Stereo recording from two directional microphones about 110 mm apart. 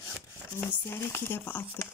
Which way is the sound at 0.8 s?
20° left (ahead or behind).